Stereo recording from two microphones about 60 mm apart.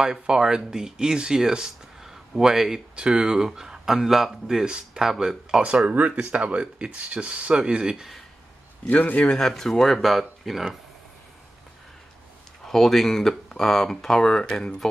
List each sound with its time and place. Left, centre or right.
0.0 s speech: centre
8.8 s a man's voice: left
9.2 s speech: centre
12.6 s speech: centre